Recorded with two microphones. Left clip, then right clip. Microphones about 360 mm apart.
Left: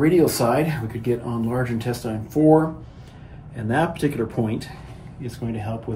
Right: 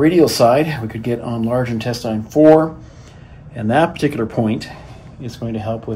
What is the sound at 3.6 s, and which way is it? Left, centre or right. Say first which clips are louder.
Speech: right 7 dB; centre.